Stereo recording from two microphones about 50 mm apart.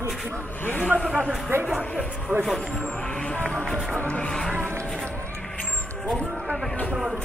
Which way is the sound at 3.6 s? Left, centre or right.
Centre.